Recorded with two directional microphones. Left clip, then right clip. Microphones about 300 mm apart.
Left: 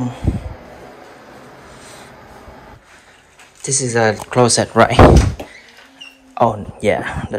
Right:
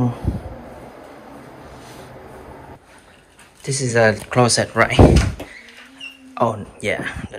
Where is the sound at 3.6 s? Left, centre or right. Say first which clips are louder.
Even; centre.